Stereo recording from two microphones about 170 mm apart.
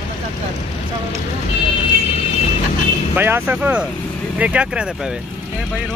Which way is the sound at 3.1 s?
10° right (ahead or behind).